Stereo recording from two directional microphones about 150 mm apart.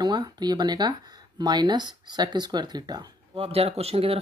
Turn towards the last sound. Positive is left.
turn(degrees=-40)  # may be behind; listen again after turning